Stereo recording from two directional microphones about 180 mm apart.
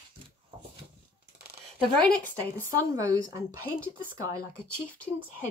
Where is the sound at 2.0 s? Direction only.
5° left (ahead or behind).